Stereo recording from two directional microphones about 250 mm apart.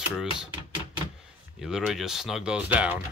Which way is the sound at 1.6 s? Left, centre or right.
Centre.